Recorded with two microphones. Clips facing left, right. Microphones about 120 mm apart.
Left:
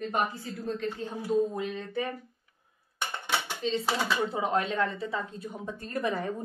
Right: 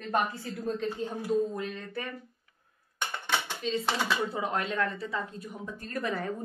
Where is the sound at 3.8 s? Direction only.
Centre (ahead or behind).